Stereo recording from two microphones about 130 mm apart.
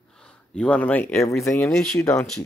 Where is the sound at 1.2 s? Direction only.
25° left (ahead or behind).